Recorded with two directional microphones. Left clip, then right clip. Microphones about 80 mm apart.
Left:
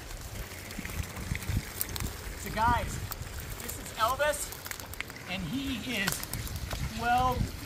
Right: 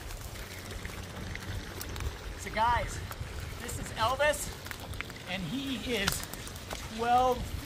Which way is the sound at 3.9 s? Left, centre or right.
Right.